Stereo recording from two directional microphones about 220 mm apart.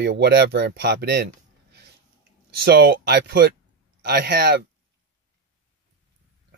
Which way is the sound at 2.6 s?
45° right (ahead or behind).